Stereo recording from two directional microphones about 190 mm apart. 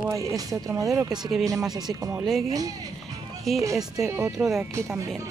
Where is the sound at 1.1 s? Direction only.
Centre (ahead or behind).